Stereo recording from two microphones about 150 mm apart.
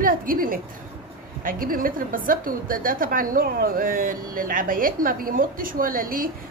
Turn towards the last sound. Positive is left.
turn(degrees=-70)  # may be behind; listen again after turning